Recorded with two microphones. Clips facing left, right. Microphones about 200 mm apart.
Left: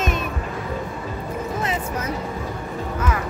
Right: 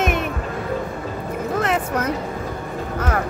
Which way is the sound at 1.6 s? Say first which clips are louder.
Right 4 dB; 65° right (ahead or behind).